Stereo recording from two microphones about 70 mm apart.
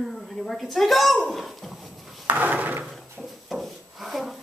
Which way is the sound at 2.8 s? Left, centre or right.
Centre.